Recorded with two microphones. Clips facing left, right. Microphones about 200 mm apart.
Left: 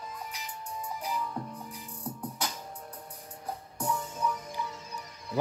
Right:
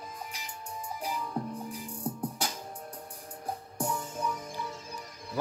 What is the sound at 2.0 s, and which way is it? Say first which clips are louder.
Music: right 2 dB; 30° right (ahead or behind).